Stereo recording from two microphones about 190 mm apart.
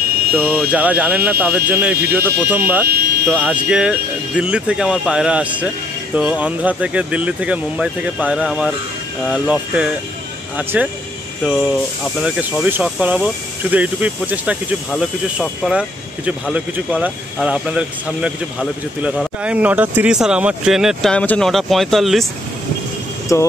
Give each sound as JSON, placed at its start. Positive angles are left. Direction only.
{"t": 0.3, "sound": "speech", "side_deg": -10}
{"t": 23.3, "sound": "speech", "side_deg": 15}